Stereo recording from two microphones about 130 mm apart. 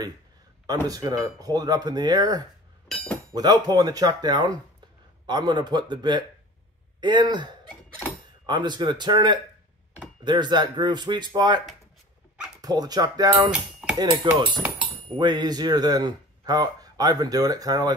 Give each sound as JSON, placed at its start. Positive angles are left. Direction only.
{"t": 0.8, "sound": "speech", "side_deg": -30}
{"t": 2.9, "sound": "chink", "side_deg": 10}
{"t": 3.3, "sound": "speech", "side_deg": -30}
{"t": 12.6, "sound": "speech", "side_deg": -30}
{"t": 13.5, "sound": "cutlery", "side_deg": -5}
{"t": 13.9, "sound": "speech", "side_deg": -30}